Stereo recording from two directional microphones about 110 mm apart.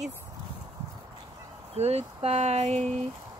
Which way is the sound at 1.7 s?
75° right (ahead or behind).